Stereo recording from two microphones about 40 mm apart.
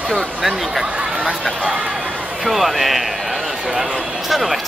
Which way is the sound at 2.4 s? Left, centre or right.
Centre.